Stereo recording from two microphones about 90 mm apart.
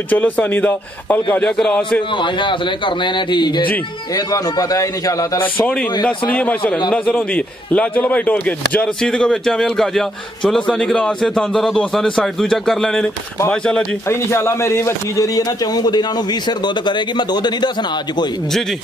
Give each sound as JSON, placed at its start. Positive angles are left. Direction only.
{"t": 0.1, "sound": "speech", "side_deg": 20}
{"t": 1.6, "sound": "a man's voice", "side_deg": 5}
{"t": 2.0, "sound": "a man's voice", "side_deg": 65}
{"t": 4.1, "sound": "a man's voice", "side_deg": 45}
{"t": 5.4, "sound": "a man's voice", "side_deg": 15}
{"t": 14.0, "sound": "speech", "side_deg": 30}
{"t": 15.2, "sound": "a man's voice", "side_deg": 45}